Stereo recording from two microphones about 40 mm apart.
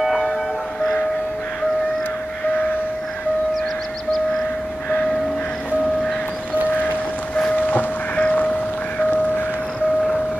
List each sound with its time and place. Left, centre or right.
0.0 s music: centre
7.3 s vehicle: left
7.6 s music: left